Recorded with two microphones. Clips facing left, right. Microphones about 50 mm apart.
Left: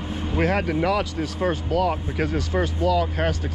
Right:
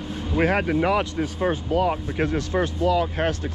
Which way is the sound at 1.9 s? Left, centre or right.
Centre.